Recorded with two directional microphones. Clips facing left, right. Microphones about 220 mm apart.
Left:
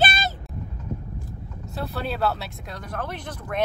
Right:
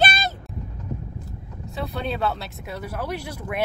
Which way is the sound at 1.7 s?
Centre (ahead or behind).